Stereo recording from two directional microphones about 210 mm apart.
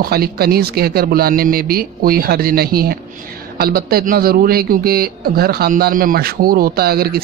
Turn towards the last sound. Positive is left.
turn(degrees=-45)  # may be behind; listen again after turning